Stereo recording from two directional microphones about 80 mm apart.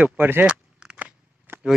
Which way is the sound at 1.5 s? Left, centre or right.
Right.